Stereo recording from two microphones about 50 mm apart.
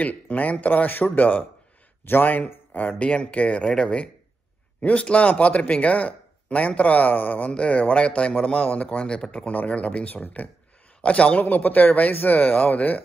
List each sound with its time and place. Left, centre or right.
0.0 s a man's voice: left
3.0 s a man's voice: left
9.0 s speech: centre
9.5 s a man's voice: left